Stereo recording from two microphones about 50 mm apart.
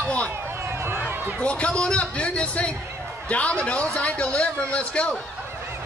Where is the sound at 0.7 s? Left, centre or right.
Right.